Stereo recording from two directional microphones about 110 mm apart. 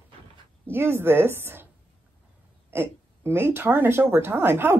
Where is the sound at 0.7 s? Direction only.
20° right (ahead or behind).